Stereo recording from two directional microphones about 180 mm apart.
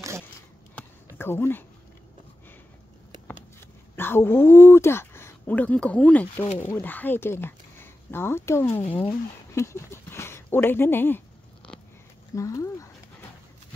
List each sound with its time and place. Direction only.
1.1 s speech: 10° left (ahead or behind)
3.9 s speech: 10° left (ahead or behind)
9.6 s a sound: 15° left (ahead or behind)
12.4 s speech: 15° left (ahead or behind)